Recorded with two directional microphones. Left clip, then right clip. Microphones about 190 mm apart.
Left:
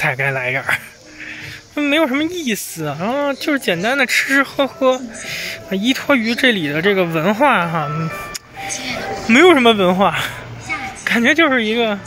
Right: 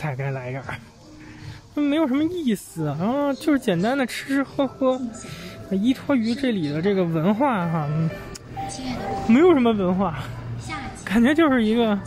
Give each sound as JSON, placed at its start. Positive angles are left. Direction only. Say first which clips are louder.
{"t": 0.0, "sound": "speech", "louder": "left 13 dB", "side_deg": 0}
{"t": 11.1, "sound": "speech", "louder": "left 6 dB", "side_deg": -10}